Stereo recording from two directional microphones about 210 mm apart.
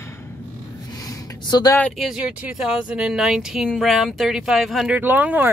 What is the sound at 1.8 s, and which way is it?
Speech, centre (ahead or behind).